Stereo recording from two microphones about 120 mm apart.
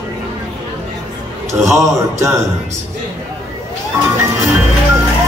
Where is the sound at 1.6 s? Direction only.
25° right (ahead or behind).